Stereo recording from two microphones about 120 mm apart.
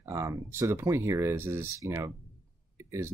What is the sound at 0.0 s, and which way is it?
Speech, 25° right (ahead or behind).